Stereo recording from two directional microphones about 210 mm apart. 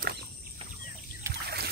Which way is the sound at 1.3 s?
50° right (ahead or behind).